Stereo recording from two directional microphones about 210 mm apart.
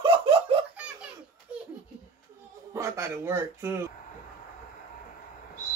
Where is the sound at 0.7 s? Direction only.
5° right (ahead or behind).